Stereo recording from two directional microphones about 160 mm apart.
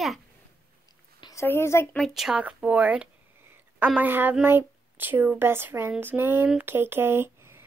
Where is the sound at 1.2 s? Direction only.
15° left (ahead or behind).